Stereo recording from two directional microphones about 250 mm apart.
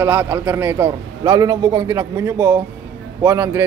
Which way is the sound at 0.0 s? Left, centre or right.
Centre.